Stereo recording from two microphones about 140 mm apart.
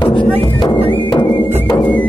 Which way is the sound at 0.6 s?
35° left (ahead or behind).